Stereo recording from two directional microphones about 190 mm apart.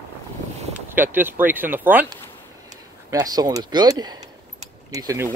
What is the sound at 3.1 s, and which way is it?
Speech, 20° right (ahead or behind).